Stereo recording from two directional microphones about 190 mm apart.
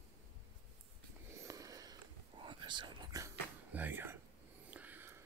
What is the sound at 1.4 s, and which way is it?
Whispering, 15° right (ahead or behind).